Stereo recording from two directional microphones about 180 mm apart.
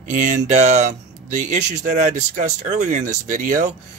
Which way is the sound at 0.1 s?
45° right (ahead or behind).